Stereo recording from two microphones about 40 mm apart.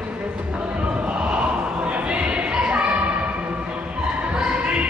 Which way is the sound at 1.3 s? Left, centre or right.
Right.